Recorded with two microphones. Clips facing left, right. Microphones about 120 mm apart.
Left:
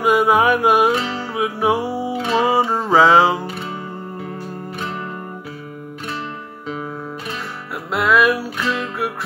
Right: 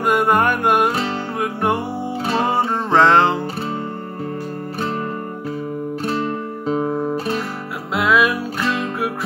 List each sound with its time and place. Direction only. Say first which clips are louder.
0.0 s music: left 1 dB; 5° left (ahead or behind)
0.9 s music: even; 40° right (ahead or behind)
1.4 s music: left 3 dB; 5° left (ahead or behind)
6.7 s guitar: right 8 dB; 35° right (ahead or behind)
7.9 s music: left 1 dB; centre (ahead or behind)